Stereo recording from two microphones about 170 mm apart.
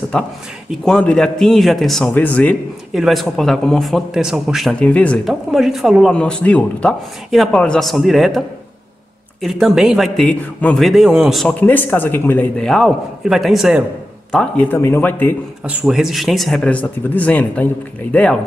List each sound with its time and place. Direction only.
0.7 s speech: 5° left (ahead or behind)
2.9 s speech: centre (ahead or behind)
11.6 s speech: 10° left (ahead or behind)
15.6 s speech: 5° right (ahead or behind)